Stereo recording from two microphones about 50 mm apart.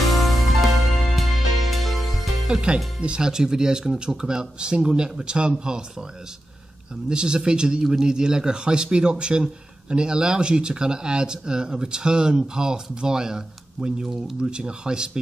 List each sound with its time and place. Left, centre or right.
0.1 s music: centre
2.4 s speech: centre
7.1 s speech: centre